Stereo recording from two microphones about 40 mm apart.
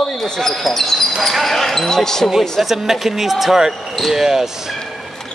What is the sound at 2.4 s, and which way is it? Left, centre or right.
Speech, centre.